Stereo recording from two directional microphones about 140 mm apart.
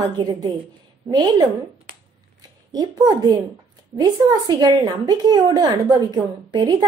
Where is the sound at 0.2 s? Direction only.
30° right (ahead or behind).